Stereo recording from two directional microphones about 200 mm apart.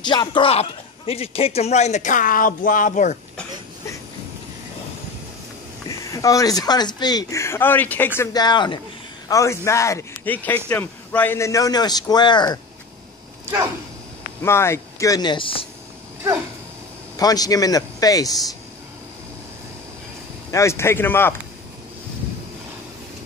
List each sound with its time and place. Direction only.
0.0 s speech: 20° left (ahead or behind); by 3.2 s 40° left (ahead or behind)
5.9 s a man's voice: 15° left (ahead or behind)
14.4 s a man's voice: 10° left (ahead or behind)
17.2 s a man's voice: 20° left (ahead or behind)
20.5 s a man's voice: 15° left (ahead or behind)